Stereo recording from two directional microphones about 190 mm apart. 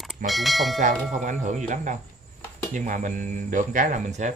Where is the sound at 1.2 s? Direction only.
40° right (ahead or behind).